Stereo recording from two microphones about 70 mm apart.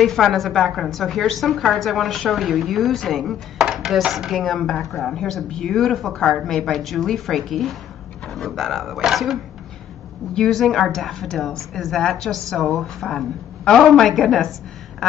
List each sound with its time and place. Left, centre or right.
0.0 s a woman's voice: centre